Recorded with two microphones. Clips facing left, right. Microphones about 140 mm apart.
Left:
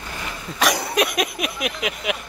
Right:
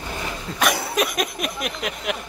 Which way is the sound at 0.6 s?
Centre (ahead or behind).